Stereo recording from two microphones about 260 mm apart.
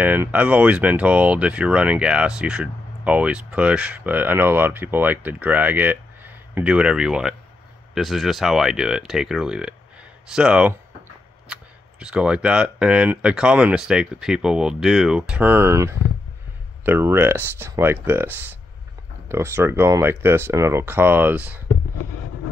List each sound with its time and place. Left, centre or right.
0.0 s speech: centre
11.5 s a sound: centre
12.0 s speech: centre